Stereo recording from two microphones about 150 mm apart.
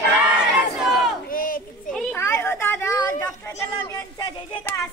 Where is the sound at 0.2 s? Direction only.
5° right (ahead or behind).